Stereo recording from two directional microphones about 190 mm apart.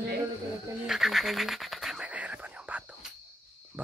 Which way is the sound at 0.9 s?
Centre (ahead or behind).